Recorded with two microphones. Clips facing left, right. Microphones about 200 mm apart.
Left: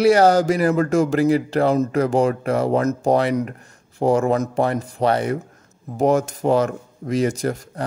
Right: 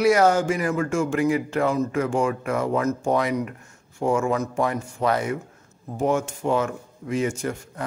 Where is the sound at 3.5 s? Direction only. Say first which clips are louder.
Left 5 dB; 35° left (ahead or behind).